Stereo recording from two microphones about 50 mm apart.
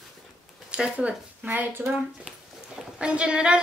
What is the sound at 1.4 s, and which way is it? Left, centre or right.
Speech, right.